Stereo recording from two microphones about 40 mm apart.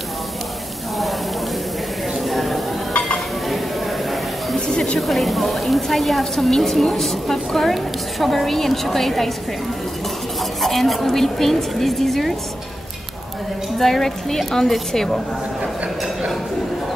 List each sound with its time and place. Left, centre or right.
2.2 s a sound: centre
4.6 s music: centre
4.9 s a woman's voice: centre
10.6 s a woman's voice: centre
13.7 s a woman's voice: centre